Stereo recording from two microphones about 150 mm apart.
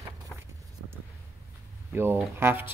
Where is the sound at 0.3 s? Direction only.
10° left (ahead or behind).